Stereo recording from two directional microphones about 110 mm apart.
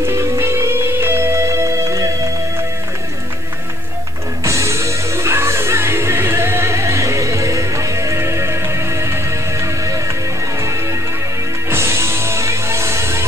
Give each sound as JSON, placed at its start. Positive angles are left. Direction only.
{"t": 0.0, "sound": "music", "side_deg": -25}
{"t": 4.4, "sound": "music", "side_deg": -25}